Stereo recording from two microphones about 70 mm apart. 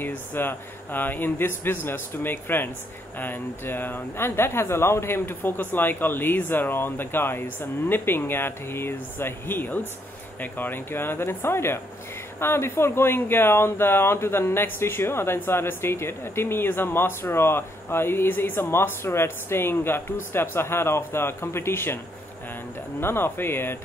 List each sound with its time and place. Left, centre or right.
0.0 s speech: left